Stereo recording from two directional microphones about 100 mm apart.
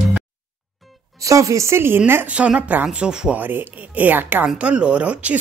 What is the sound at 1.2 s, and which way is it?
Speech, 35° right (ahead or behind).